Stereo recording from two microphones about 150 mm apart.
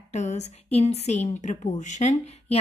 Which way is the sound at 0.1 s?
50° left (ahead or behind).